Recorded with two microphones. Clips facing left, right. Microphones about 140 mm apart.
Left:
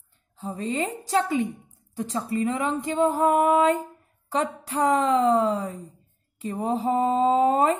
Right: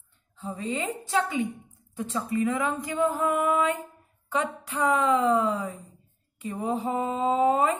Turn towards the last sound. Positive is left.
turn(degrees=35)  # may be behind; listen again after turning